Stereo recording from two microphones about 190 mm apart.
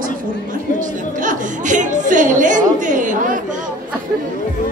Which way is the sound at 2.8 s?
40° right (ahead or behind).